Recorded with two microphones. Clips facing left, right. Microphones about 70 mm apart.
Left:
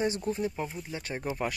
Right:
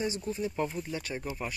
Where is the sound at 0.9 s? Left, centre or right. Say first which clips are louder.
Left 2 dB; left.